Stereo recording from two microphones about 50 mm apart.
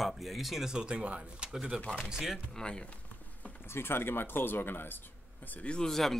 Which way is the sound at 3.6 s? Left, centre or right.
Left.